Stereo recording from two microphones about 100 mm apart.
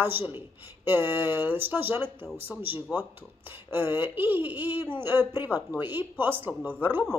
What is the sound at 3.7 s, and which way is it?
Speech, 20° right (ahead or behind).